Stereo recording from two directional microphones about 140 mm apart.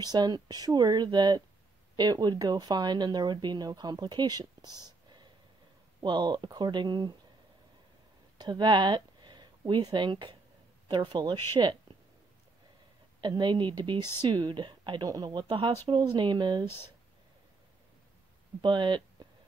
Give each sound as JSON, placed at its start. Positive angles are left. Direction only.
{"t": 0.0, "sound": "speech", "side_deg": -30}
{"t": 8.4, "sound": "speech", "side_deg": -30}
{"t": 13.2, "sound": "speech", "side_deg": -35}
{"t": 18.6, "sound": "speech", "side_deg": -35}